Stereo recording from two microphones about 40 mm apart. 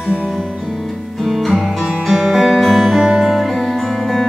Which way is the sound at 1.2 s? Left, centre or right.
Centre.